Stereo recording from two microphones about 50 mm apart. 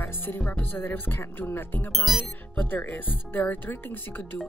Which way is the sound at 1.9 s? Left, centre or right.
Centre.